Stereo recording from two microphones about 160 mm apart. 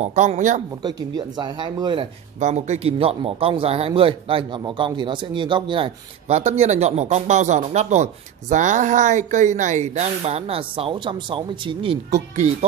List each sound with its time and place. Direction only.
0.0 s speech: 45° right (ahead or behind)
0.8 s speech: 25° right (ahead or behind)
2.4 s a man's voice: 45° right (ahead or behind)
12.1 s speech: 45° right (ahead or behind)